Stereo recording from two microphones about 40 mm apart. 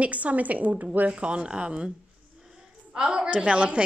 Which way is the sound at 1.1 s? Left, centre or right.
Right.